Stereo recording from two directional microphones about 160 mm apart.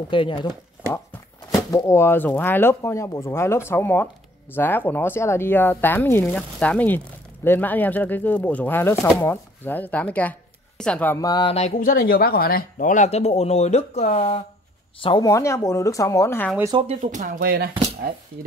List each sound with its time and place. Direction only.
0.1 s speech: 30° left (ahead or behind)
1.5 s speech: 20° left (ahead or behind)
8.9 s speech: centre (ahead or behind)
9.2 s speech: 10° left (ahead or behind)
11.1 s speech: 25° left (ahead or behind)
11.8 s speech: 70° left (ahead or behind); by 14.4 s 40° left (ahead or behind)
15.0 s speech: 30° left (ahead or behind); by 16.5 s 15° left (ahead or behind)
16.7 s speech: 40° right (ahead or behind)
17.0 s speech: 50° right (ahead or behind)
17.4 s speech: 75° right (ahead or behind)